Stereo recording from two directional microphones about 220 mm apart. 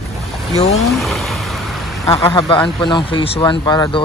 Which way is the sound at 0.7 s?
Centre (ahead or behind).